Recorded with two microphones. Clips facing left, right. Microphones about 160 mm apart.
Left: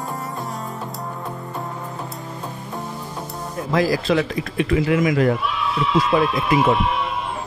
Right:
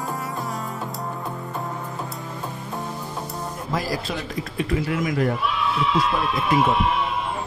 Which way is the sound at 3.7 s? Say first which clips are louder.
Left 9 dB; 90° left.